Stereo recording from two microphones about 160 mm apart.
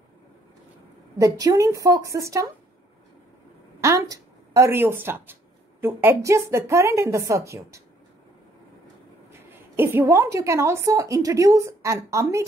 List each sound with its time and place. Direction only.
1.1 s a woman's voice: 20° right (ahead or behind)
3.8 s speech: 20° right (ahead or behind)
9.5 s a woman's voice: 15° right (ahead or behind)